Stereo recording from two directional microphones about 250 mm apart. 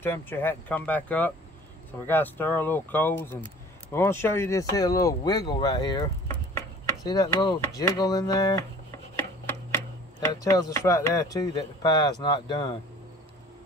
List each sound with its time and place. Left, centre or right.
0.0 s speech: centre
10.4 s speech: centre